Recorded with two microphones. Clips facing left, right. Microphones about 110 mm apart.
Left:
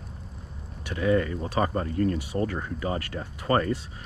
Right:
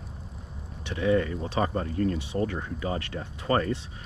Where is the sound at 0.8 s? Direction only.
40° left (ahead or behind).